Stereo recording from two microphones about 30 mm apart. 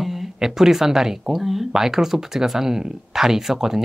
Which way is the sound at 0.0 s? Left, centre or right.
Centre.